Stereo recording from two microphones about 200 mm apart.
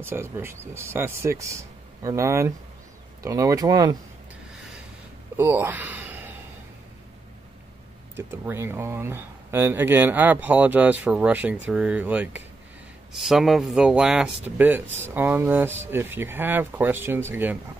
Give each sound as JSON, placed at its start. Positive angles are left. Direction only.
{"t": 0.0, "sound": "speech", "side_deg": -10}
{"t": 5.4, "sound": "speech", "side_deg": -10}
{"t": 8.3, "sound": "speech", "side_deg": -10}